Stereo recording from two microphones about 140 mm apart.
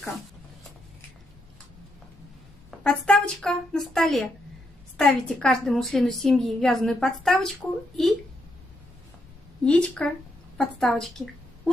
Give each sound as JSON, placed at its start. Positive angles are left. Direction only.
{"t": 2.8, "sound": "a woman's voice", "side_deg": 5}
{"t": 9.7, "sound": "a woman's voice", "side_deg": 10}